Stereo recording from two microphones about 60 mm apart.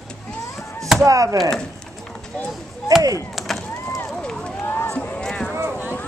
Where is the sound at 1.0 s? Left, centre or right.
Right.